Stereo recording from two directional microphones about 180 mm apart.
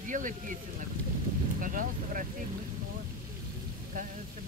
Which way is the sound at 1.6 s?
50° right (ahead or behind).